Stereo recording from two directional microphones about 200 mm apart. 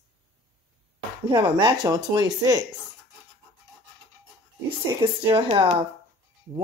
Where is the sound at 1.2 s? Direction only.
20° right (ahead or behind).